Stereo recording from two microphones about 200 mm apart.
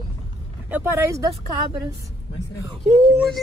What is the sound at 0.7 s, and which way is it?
Speech, 10° right (ahead or behind).